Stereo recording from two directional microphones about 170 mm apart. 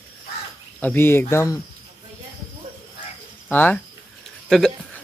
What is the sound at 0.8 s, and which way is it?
Speech, 10° left (ahead or behind).